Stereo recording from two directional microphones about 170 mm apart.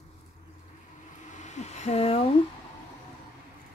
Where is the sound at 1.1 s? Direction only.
45° left (ahead or behind).